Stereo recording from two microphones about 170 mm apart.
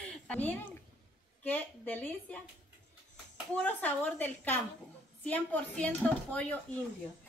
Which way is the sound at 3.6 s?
10° left (ahead or behind).